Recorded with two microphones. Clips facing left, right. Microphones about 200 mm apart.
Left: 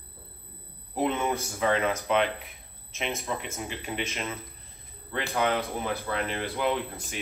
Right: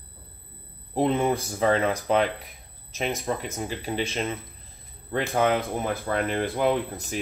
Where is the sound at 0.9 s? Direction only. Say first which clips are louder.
Right 4 dB; 35° right (ahead or behind).